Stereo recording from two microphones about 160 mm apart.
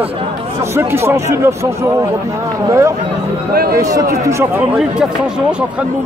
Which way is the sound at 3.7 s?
20° right (ahead or behind).